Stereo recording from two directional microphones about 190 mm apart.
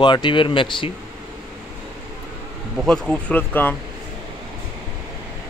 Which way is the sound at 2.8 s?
5° left (ahead or behind).